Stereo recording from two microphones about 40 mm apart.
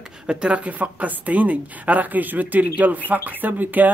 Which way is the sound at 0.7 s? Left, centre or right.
Right.